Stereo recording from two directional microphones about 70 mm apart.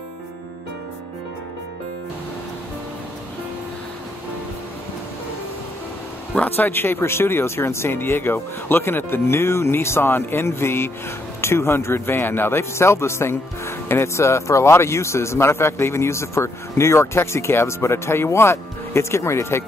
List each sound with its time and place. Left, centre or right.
6.5 s a man's voice: left